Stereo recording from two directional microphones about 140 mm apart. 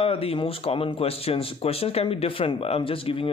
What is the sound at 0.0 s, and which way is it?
Speech, 45° left (ahead or behind).